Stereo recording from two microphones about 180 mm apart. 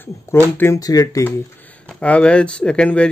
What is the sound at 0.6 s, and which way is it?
Speech, 15° left (ahead or behind).